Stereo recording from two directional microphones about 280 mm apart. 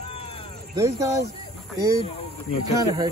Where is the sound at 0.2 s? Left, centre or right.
Centre.